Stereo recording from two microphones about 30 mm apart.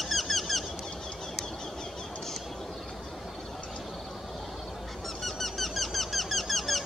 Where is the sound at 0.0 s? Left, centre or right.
Centre.